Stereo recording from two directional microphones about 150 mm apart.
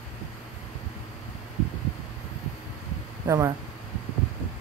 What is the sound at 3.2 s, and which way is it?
Speech, 20° right (ahead or behind).